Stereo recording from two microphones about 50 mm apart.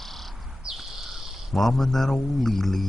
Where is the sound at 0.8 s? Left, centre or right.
Centre.